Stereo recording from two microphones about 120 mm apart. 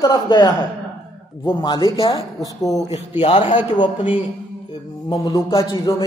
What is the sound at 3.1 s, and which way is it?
Speech, 15° right (ahead or behind).